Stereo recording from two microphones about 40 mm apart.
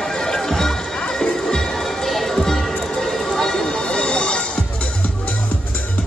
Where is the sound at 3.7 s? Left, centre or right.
Left.